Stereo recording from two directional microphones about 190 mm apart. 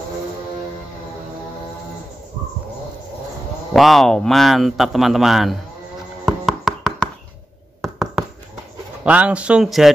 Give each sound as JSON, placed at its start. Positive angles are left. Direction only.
{"t": 3.7, "sound": "speech", "side_deg": 0}
{"t": 6.2, "sound": "a sound", "side_deg": 0}
{"t": 9.0, "sound": "speech", "side_deg": -5}